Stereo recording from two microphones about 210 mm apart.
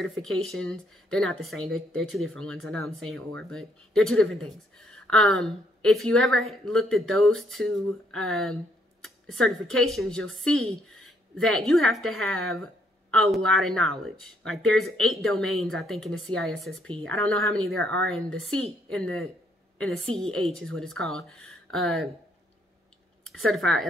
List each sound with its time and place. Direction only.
0.2 s speech: centre (ahead or behind)
17.4 s speech: 75° right (ahead or behind)
17.6 s speech: centre (ahead or behind)
20.2 s speech: centre (ahead or behind)
23.2 s speech: centre (ahead or behind)